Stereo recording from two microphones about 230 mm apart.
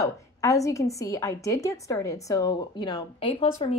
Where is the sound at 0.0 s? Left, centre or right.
Centre.